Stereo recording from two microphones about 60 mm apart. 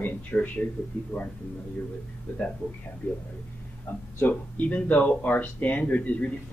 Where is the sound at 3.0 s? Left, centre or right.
Left.